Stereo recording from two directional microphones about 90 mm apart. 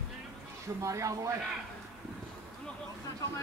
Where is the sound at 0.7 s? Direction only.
35° right (ahead or behind).